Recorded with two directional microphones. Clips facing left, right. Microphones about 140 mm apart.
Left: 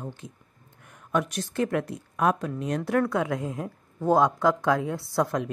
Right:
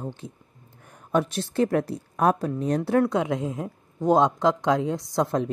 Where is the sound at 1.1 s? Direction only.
30° right (ahead or behind).